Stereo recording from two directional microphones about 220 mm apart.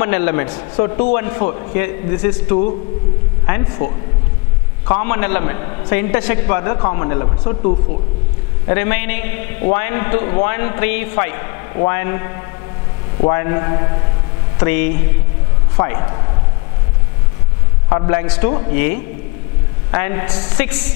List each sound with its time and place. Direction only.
0.0 s a man's voice: 15° left (ahead or behind)
3.4 s a man's voice: 15° left (ahead or behind)
4.8 s a man's voice: 20° left (ahead or behind)
8.6 s a man's voice: 15° left (ahead or behind)
15.8 s a man's voice: 20° left (ahead or behind)
17.8 s a man's voice: 20° left (ahead or behind)
19.9 s a man's voice: 15° left (ahead or behind)